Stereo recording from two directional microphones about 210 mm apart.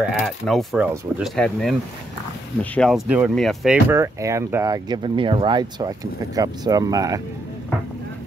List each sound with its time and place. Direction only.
0.2 s speech: centre (ahead or behind); by 7.2 s 15° right (ahead or behind)